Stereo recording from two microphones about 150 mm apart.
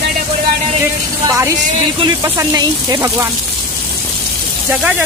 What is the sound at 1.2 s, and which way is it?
A woman's voice, 20° right (ahead or behind).